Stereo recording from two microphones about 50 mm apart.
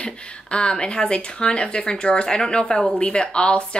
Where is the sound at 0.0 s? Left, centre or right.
Left.